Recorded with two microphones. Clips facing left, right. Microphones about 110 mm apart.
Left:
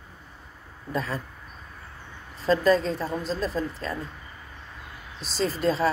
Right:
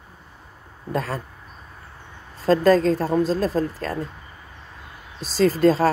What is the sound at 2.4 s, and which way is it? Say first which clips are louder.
Speech: right 5 dB; 45° right (ahead or behind).